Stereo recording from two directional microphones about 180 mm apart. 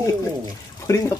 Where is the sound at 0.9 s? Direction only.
15° left (ahead or behind).